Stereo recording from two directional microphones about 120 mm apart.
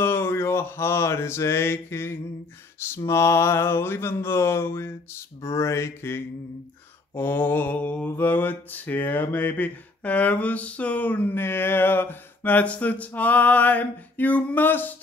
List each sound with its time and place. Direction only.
0.0 s mantra: 20° left (ahead or behind)